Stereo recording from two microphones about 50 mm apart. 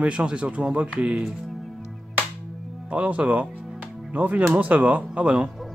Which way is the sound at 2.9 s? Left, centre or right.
Right.